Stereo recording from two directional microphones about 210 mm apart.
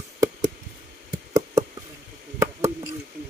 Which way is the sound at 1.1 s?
15° right (ahead or behind).